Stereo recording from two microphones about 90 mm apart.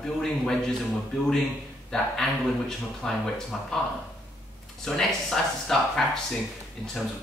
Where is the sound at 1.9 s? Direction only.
5° left (ahead or behind).